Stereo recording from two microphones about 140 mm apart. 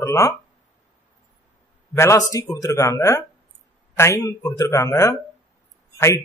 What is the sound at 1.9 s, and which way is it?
Speech, 20° left (ahead or behind).